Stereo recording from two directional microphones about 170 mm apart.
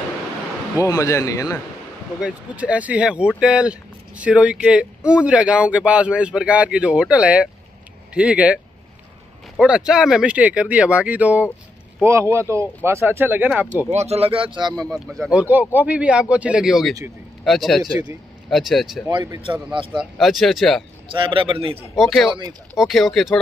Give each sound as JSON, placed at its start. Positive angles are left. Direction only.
{"t": 0.8, "sound": "a man's voice", "side_deg": 20}
{"t": 2.2, "sound": "speech", "side_deg": -10}
{"t": 9.6, "sound": "speech", "side_deg": -5}
{"t": 13.8, "sound": "speech", "side_deg": -40}
{"t": 14.9, "sound": "speech", "side_deg": 0}
{"t": 19.0, "sound": "a man's voice", "side_deg": -20}
{"t": 20.0, "sound": "speech", "side_deg": 0}
{"t": 21.1, "sound": "speech", "side_deg": -30}
{"t": 21.9, "sound": "speech", "side_deg": 0}
{"t": 22.3, "sound": "a man's voice", "side_deg": -25}
{"t": 22.8, "sound": "speech", "side_deg": 0}